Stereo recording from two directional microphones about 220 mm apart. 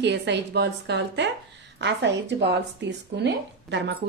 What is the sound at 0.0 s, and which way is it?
Speech, 50° right (ahead or behind).